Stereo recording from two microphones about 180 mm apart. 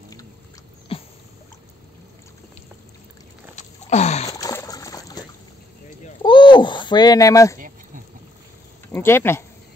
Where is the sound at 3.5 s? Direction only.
40° left (ahead or behind).